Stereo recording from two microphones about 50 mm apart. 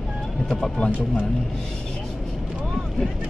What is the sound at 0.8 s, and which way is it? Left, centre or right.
Speech, left.